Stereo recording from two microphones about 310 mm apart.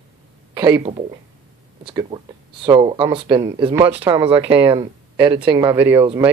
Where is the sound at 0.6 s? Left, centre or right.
Centre.